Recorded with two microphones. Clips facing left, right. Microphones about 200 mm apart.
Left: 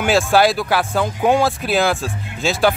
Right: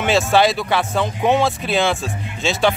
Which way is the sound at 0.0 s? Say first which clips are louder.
Left 1 dB; centre (ahead or behind).